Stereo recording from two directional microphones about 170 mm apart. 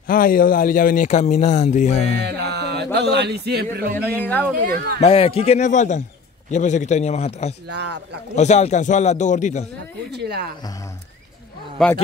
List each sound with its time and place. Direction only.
0.0 s speech: 55° left (ahead or behind); by 2.1 s 40° left (ahead or behind)
2.2 s speech: 75° right (ahead or behind)
4.0 s speech: 10° left (ahead or behind)
4.6 s speech: 60° right (ahead or behind)
5.0 s a man's voice: 35° left (ahead or behind)
7.7 s speech: 80° right
8.4 s speech: 40° left (ahead or behind)
10.1 s speech: 70° right (ahead or behind)
11.8 s speech: centre (ahead or behind)